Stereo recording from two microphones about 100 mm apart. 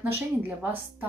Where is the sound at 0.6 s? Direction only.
20° right (ahead or behind).